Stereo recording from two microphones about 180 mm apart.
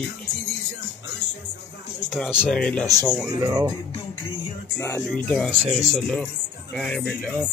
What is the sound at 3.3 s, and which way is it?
Speech, 20° right (ahead or behind).